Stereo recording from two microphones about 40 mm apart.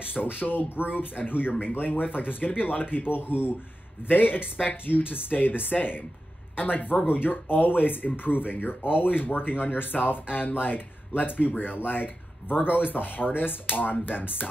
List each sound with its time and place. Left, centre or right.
0.1 s speech: left